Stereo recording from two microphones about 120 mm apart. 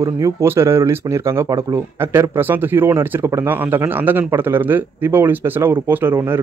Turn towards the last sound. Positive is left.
turn(degrees=-20)  # may be behind; listen again after turning